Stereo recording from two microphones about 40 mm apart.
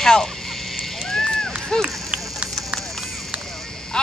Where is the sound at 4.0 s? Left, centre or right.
Centre.